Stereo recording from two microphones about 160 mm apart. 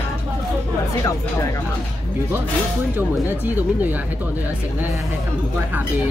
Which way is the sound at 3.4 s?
10° right (ahead or behind).